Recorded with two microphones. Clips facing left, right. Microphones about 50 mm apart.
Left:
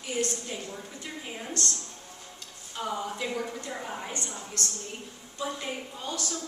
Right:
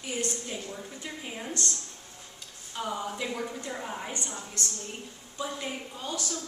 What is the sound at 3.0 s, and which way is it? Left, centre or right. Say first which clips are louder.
A woman's voice: left 1 dB; centre.